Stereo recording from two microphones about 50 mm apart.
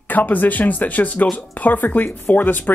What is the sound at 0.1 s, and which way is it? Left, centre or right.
Speech, left.